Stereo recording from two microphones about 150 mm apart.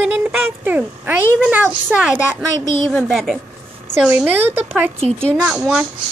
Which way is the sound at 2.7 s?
10° left (ahead or behind).